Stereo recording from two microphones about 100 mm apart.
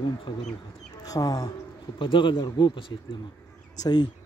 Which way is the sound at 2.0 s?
55° left (ahead or behind).